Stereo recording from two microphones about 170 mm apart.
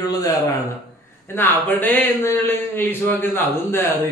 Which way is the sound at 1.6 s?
10° left (ahead or behind).